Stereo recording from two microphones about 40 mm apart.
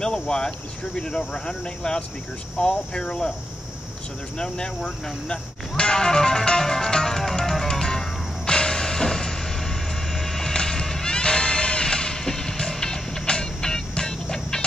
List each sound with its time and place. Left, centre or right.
0.0 s speech: centre
4.4 s music: left
10.3 s music: centre